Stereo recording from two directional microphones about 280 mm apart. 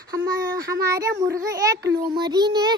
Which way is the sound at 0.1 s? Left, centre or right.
Centre.